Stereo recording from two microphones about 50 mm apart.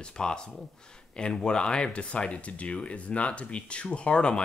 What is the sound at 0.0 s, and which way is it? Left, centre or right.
Speech, centre.